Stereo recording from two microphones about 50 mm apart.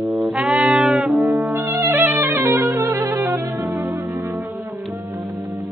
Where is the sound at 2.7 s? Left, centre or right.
Right.